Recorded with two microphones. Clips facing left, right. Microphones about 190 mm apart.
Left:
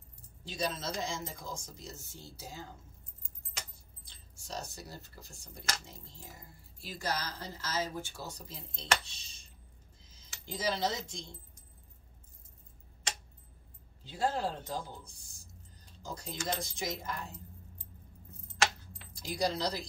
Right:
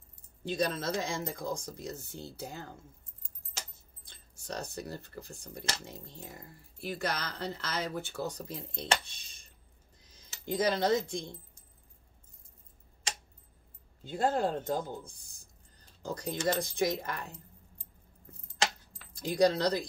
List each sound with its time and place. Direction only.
0.5 s speech: 55° right (ahead or behind)
4.1 s speech: 60° right (ahead or behind)
14.0 s speech: 50° right (ahead or behind)
19.2 s speech: 60° right (ahead or behind)